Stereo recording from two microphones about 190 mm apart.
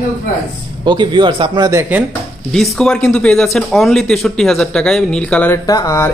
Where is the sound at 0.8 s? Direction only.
25° right (ahead or behind).